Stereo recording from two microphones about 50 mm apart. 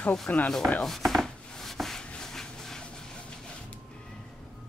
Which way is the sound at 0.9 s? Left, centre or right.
Centre.